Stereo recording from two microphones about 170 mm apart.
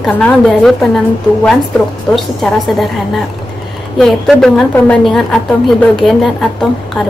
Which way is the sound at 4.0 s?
Centre (ahead or behind).